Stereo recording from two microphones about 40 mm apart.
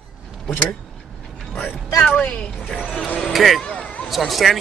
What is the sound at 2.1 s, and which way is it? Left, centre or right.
Speech, centre.